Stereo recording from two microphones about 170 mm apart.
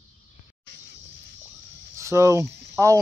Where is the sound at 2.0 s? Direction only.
15° right (ahead or behind).